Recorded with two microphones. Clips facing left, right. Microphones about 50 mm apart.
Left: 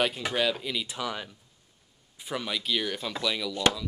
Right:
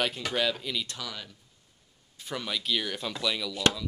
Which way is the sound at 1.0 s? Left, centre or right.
Left.